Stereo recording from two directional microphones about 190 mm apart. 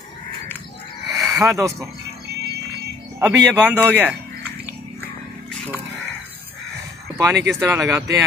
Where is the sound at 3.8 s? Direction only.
10° right (ahead or behind).